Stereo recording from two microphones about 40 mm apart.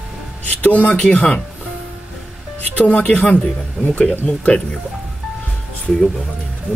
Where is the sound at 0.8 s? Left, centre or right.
Left.